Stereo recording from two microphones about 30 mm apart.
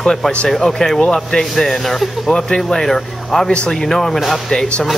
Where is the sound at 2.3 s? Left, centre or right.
Left.